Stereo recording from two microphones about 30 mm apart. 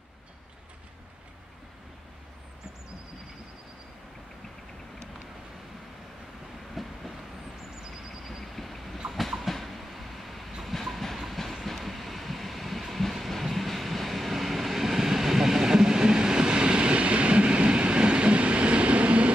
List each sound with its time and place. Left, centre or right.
6.7 s train: centre
8.3 s vehicle: centre
9.0 s train: right
9.4 s train: centre; by 19.3 s right